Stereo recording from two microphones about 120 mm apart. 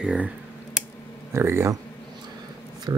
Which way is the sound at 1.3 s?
20° right (ahead or behind).